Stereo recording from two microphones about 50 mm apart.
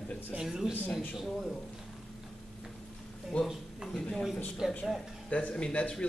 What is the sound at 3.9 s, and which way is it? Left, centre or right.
Speech, left.